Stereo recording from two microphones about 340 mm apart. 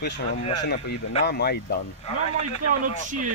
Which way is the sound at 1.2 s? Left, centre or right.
Left.